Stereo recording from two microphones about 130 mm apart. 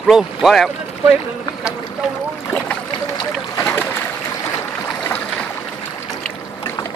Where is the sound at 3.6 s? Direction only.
15° left (ahead or behind).